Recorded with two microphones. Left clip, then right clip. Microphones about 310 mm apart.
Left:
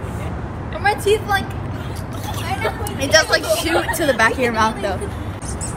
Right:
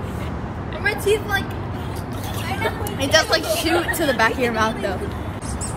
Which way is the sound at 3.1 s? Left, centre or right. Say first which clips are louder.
Left 3 dB; centre.